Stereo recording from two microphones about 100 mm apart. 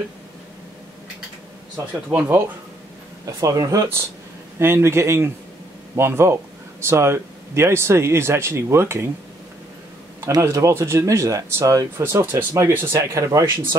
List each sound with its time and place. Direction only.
2.0 s speech: 25° right (ahead or behind)
3.3 s speech: 35° right (ahead or behind)
10.4 s speech: 30° right (ahead or behind)
12.0 s speech: 25° right (ahead or behind)